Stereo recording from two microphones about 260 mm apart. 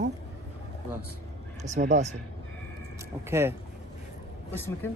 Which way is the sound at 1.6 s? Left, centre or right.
Right.